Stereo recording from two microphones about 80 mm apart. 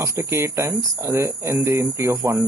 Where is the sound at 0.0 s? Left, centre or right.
Right.